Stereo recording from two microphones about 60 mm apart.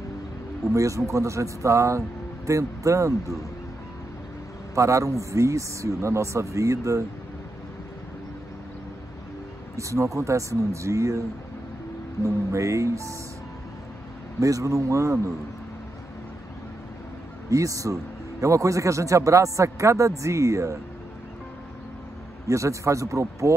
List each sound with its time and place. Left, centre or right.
0.7 s speech: right
4.7 s speech: right
9.8 s speech: right
14.4 s speech: right
17.5 s speech: right
22.5 s speech: right